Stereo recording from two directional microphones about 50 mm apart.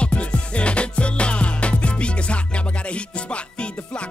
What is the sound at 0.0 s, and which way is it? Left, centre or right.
Music, left.